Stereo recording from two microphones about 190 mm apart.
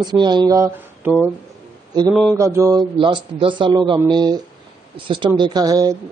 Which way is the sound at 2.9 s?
25° right (ahead or behind).